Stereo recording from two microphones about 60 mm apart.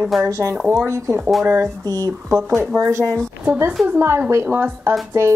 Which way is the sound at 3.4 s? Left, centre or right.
Right.